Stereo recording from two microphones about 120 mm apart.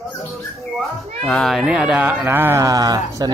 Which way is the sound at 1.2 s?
5° left (ahead or behind).